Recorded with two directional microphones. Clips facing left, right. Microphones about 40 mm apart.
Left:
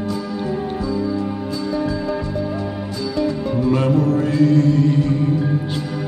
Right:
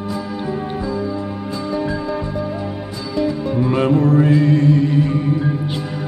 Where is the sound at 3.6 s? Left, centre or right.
Right.